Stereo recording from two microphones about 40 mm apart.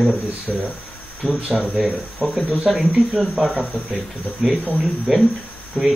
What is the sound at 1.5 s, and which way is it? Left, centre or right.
Speech, centre.